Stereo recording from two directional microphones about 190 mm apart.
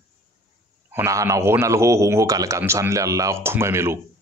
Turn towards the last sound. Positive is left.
turn(degrees=-15)  # may be behind; listen again after turning